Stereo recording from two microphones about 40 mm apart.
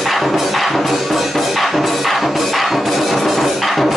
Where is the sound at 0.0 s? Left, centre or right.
Centre.